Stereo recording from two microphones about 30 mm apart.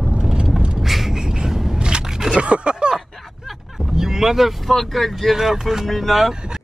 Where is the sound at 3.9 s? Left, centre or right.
Centre.